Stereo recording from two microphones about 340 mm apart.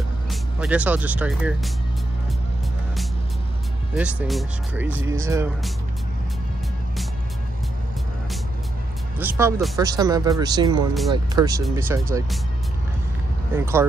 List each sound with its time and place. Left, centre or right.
0.3 s speech: centre
3.9 s speech: centre
9.2 s speech: centre
13.6 s speech: centre